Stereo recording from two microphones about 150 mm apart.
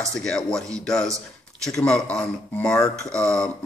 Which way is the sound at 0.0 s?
5° left (ahead or behind).